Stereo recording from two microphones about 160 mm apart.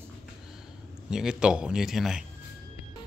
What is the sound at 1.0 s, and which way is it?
A man's voice, 5° right (ahead or behind).